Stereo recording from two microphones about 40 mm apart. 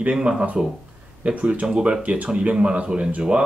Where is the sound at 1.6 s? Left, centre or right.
Right.